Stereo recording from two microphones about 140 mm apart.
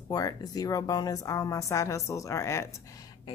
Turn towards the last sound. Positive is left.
turn(degrees=20)  # may be behind; listen again after turning